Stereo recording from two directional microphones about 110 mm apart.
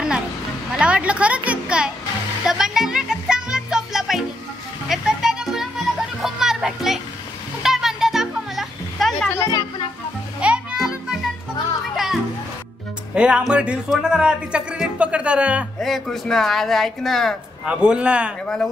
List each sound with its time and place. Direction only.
0.7 s a sound: 10° right (ahead or behind)
2.4 s music: 5° right (ahead or behind)
6.2 s children playing: 5° right (ahead or behind)
7.6 s music: 5° right (ahead or behind)
9.4 s music: 35° left (ahead or behind)
10.4 s music: 10° right (ahead or behind)
13.1 s speech: 10° right (ahead or behind)
15.8 s speech: centre (ahead or behind)
17.6 s speech: 10° right (ahead or behind)
18.4 s speech: 5° left (ahead or behind)